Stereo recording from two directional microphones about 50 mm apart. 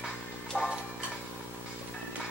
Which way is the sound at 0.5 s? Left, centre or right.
Centre.